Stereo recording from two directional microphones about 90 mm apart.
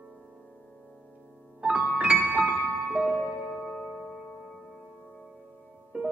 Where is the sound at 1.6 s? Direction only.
15° right (ahead or behind).